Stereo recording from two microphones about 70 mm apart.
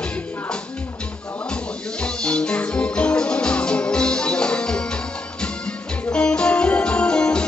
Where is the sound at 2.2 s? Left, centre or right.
Centre.